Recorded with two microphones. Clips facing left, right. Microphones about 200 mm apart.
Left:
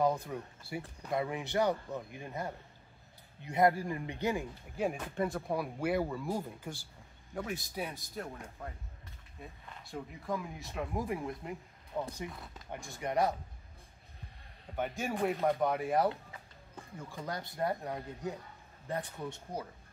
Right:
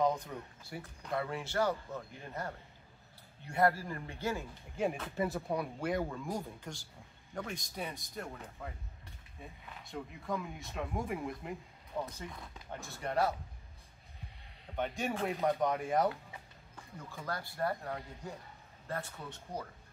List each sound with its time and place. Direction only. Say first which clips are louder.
0.0 s speech: left 1 dB; 10° left (ahead or behind)
5.1 s speech: left 1 dB; 5° right (ahead or behind); by 13.3 s 15° left (ahead or behind)
14.8 s speech: left 1 dB; centre (ahead or behind)
17.1 s speech: left 1 dB; 20° left (ahead or behind)